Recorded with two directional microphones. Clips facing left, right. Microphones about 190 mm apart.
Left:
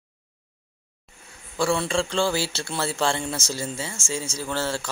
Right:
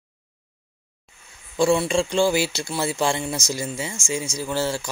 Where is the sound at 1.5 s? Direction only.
20° right (ahead or behind).